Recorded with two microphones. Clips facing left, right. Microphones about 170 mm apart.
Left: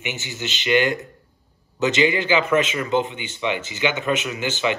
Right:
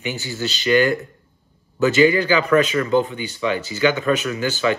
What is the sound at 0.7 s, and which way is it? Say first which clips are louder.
A man's voice: right 3 dB; 20° left (ahead or behind).